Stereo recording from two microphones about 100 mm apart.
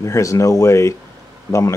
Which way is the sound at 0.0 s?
30° left (ahead or behind).